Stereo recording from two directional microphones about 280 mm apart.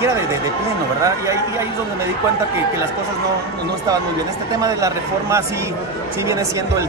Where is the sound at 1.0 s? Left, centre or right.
Centre.